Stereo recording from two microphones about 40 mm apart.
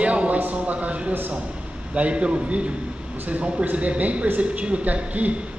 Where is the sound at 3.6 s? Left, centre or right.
Right.